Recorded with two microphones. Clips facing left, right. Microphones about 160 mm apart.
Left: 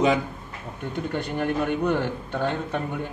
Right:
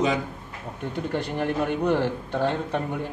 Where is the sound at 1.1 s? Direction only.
35° right (ahead or behind).